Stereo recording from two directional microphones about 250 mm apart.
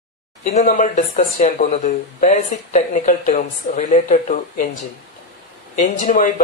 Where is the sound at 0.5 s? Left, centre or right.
Left.